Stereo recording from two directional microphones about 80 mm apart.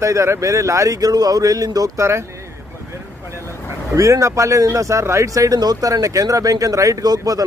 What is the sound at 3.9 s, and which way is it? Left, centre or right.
Speech, right.